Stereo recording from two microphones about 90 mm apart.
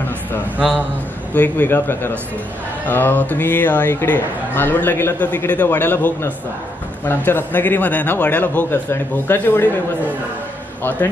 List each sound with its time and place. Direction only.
0.6 s a man's voice: 15° right (ahead or behind)
1.3 s speech: 20° left (ahead or behind)
10.8 s a man's voice: 20° left (ahead or behind)